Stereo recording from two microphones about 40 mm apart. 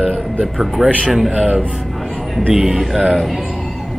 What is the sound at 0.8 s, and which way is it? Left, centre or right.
Speech, centre.